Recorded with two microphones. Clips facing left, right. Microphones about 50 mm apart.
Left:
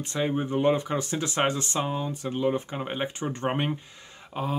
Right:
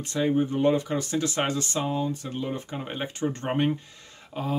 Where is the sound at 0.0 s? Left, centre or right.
Left.